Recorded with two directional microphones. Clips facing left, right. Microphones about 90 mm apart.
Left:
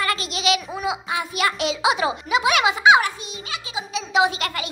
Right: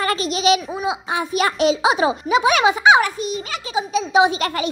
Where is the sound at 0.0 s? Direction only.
30° right (ahead or behind).